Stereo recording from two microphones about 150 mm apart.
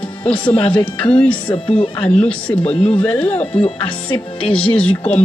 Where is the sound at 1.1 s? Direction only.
10° left (ahead or behind).